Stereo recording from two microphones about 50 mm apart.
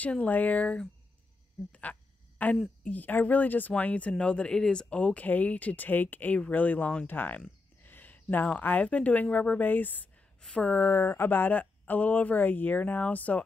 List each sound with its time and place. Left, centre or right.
0.0 s speech: left
1.7 s a sound: left
2.8 s speech: left
10.8 s speech: left